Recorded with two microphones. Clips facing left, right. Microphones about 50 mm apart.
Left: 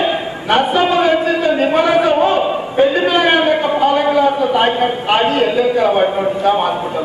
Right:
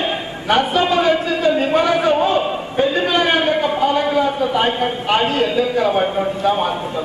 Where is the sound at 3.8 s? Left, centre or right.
Left.